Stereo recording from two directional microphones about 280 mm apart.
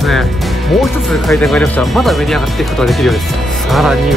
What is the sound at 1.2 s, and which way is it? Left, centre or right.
Speech, centre.